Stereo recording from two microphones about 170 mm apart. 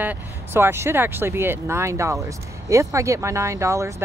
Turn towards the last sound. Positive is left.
turn(degrees=-15)  # may be behind; listen again after turning